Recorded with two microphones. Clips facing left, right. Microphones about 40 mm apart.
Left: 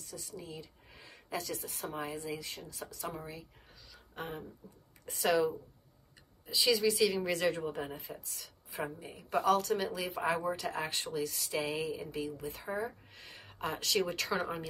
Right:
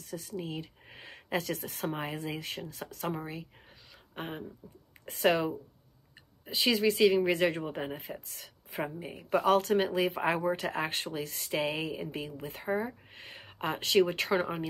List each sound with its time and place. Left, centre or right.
0.0 s speech: right